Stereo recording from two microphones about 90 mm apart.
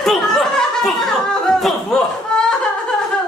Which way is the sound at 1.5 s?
5° left (ahead or behind).